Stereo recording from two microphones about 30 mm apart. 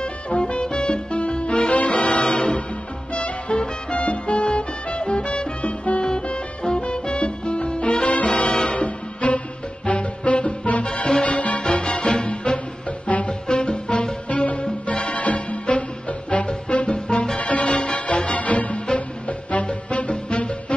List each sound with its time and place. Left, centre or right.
0.0 s music: left
1.7 s music: left
6.2 s music: left
8.1 s music: left
11.8 s music: left
14.3 s music: left
17.4 s music: left
18.9 s music: left